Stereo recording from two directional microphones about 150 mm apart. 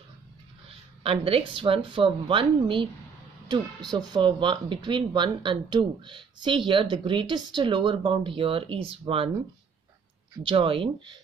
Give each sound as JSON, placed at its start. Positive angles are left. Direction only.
{"t": 0.7, "sound": "speech", "side_deg": -40}
{"t": 10.3, "sound": "speech", "side_deg": -35}